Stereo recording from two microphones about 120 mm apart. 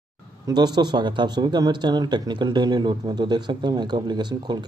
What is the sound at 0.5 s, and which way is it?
Speech, 35° right (ahead or behind).